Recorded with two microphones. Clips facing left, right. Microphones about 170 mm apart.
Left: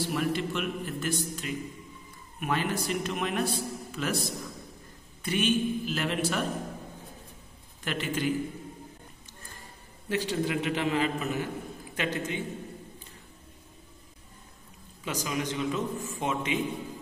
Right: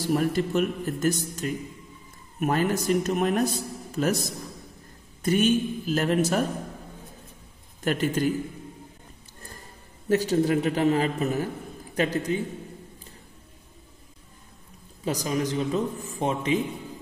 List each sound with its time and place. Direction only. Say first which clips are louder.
0.0 s a man's voice: right 5 dB; 40° right (ahead or behind)
7.8 s a man's voice: right 6 dB; 45° right (ahead or behind)
10.0 s a man's voice: right 7 dB; 40° right (ahead or behind)
15.0 s a man's voice: right 5 dB; 35° right (ahead or behind)